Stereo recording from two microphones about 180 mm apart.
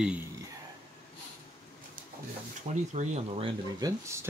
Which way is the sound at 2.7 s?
40° right (ahead or behind).